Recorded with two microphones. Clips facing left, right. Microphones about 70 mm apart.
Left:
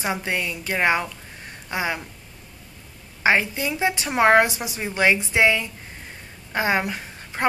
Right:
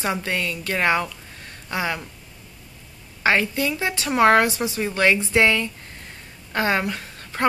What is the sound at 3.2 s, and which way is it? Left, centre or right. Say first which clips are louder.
A woman's voice: even; centre.